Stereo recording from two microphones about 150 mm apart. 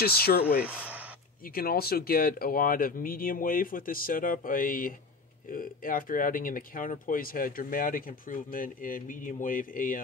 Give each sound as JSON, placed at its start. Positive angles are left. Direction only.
{"t": 0.0, "sound": "speech", "side_deg": 90}
{"t": 0.6, "sound": "speech", "side_deg": -10}
{"t": 1.4, "sound": "speech", "side_deg": 80}